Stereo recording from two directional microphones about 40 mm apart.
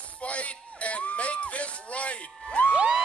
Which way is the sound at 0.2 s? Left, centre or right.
Left.